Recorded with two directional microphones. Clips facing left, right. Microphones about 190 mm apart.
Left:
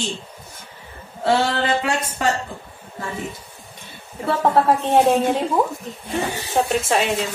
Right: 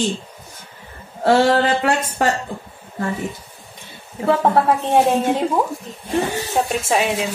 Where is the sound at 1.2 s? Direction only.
45° right (ahead or behind).